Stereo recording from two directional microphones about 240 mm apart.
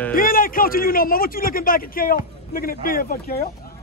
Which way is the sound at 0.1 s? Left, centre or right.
Left.